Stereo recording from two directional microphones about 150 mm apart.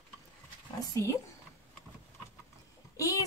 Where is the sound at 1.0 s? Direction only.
20° left (ahead or behind).